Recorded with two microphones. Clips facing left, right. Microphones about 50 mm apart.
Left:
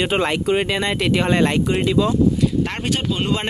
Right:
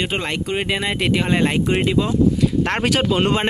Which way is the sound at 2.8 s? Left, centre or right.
Right.